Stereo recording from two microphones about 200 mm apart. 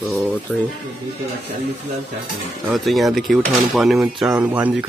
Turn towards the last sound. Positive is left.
turn(degrees=-5)  # may be behind; listen again after turning